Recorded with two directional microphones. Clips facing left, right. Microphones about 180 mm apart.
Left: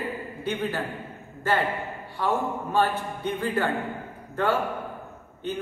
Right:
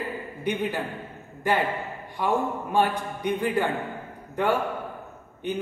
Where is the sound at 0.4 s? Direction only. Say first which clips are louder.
Right 2 dB; 15° right (ahead or behind).